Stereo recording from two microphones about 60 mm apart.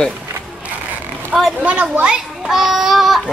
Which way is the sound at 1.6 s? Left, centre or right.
Right.